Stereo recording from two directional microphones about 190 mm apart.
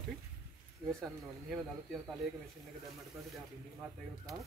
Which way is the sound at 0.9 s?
Centre (ahead or behind).